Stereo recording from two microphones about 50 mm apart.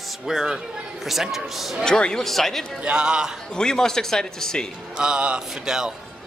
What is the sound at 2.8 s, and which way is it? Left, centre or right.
Speech, centre.